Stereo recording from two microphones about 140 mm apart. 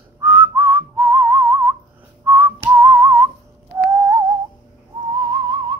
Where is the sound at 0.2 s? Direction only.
15° right (ahead or behind).